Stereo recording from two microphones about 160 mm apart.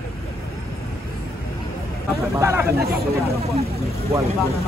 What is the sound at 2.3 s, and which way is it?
Speech, 15° right (ahead or behind).